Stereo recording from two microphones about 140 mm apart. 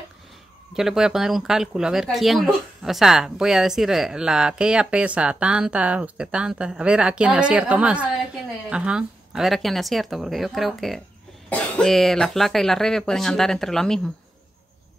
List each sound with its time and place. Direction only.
0.7 s speech: 5° right (ahead or behind)